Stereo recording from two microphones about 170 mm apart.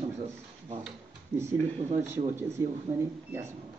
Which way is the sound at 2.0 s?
15° right (ahead or behind).